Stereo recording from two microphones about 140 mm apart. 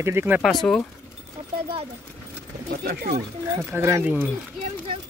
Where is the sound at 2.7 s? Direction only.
90° right.